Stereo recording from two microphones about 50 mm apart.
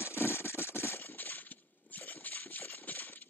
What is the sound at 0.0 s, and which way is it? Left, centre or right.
Engine, left.